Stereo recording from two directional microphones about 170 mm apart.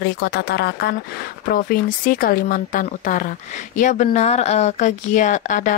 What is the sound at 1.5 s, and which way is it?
Speech, 55° left (ahead or behind).